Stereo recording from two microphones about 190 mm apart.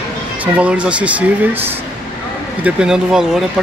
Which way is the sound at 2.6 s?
5° right (ahead or behind).